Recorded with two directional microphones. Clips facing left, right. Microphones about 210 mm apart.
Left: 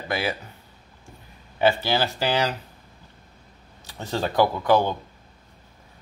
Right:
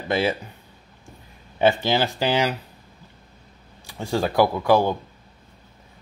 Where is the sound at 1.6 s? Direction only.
20° right (ahead or behind).